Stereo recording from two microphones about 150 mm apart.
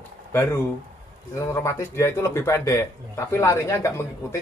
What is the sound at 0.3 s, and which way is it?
A man's voice, 15° left (ahead or behind).